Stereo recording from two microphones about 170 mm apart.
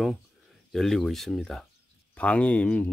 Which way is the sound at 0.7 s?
Centre (ahead or behind).